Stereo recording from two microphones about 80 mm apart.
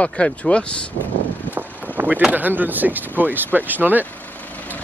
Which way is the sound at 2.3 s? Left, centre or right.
Right.